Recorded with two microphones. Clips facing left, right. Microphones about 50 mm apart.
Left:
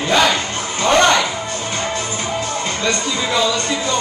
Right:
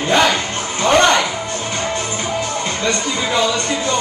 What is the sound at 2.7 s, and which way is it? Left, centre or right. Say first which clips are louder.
Speech: left 1 dB; right.